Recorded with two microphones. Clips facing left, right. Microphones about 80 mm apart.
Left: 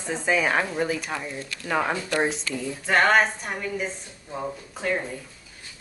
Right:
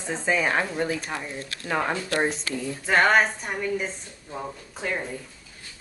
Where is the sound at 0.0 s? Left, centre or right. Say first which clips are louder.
Left 1 dB; centre.